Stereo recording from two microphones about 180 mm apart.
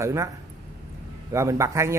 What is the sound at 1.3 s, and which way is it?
Speech, 15° right (ahead or behind).